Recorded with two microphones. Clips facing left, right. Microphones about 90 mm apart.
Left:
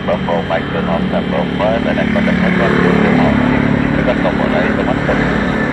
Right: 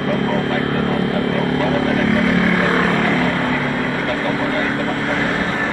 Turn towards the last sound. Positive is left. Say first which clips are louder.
# left 5 dB
turn(degrees=15)  # may be behind; listen again after turning